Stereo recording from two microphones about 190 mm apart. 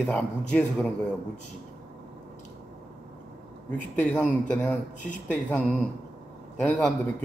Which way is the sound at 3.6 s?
10° left (ahead or behind).